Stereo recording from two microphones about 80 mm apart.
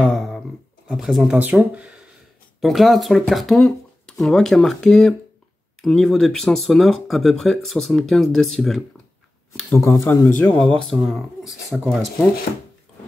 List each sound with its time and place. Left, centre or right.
0.1 s a sound: centre
0.9 s speech: centre
2.6 s speech: centre
9.8 s speech: left
10.6 s speech: centre